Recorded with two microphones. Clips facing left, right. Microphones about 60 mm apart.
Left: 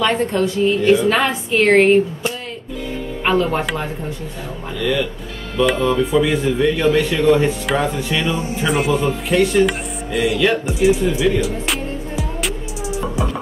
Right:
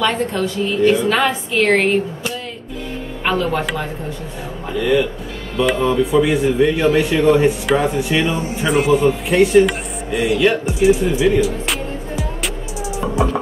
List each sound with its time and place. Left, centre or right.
0.0 s a woman's voice: centre
3.3 s a woman's voice: centre
4.7 s speech: centre
8.6 s speech: centre
11.4 s music: centre